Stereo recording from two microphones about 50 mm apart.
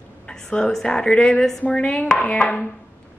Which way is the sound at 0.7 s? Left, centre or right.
Centre.